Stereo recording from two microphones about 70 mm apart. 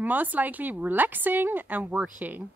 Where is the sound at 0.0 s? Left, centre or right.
Right.